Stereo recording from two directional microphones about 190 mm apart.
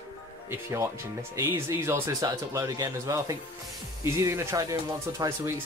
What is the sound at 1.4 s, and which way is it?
Speech, 15° right (ahead or behind).